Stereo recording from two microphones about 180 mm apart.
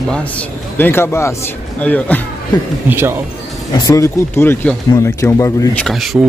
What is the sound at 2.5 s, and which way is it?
Speech, 20° left (ahead or behind).